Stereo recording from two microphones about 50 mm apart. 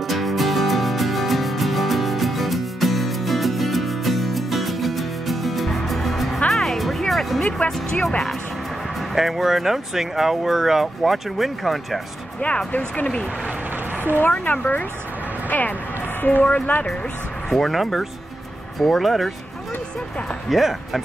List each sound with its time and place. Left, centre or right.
0.0 s music: centre
7.4 s music: centre
9.1 s speech: centre
12.4 s speech: left
14.3 s speech: left
15.4 s a sound: left
16.2 s speech: left
16.8 s speech: centre
17.5 s speech: centre
20.4 s speech: centre